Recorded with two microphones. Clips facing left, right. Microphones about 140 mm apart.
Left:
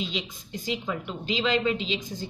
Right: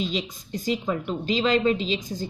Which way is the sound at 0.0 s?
45° right (ahead or behind).